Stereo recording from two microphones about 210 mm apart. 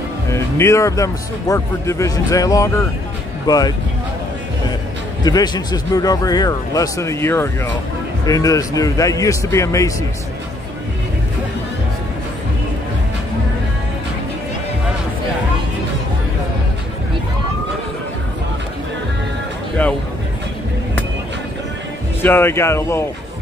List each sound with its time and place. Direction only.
0.3 s speech: 15° left (ahead or behind)
5.2 s speech: 20° left (ahead or behind)
19.8 s speech: 10° left (ahead or behind)
22.2 s speech: 10° left (ahead or behind)